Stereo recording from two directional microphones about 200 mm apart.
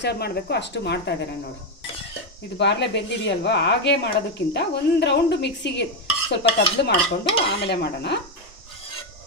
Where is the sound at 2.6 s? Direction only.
60° left (ahead or behind).